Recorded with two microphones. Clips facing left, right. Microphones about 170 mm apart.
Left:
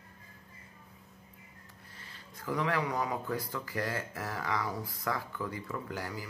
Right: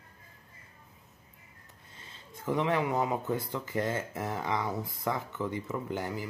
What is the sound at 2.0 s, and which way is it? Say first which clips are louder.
Speech: right 3 dB; 20° right (ahead or behind).